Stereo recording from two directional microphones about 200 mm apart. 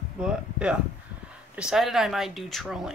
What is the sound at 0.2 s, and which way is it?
Speech, 5° right (ahead or behind).